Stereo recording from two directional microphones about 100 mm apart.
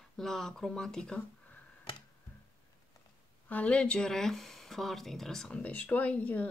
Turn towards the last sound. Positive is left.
turn(degrees=15)  # may be behind; listen again after turning